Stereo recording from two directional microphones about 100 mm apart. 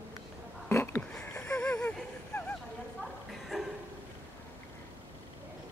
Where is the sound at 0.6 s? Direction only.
25° left (ahead or behind).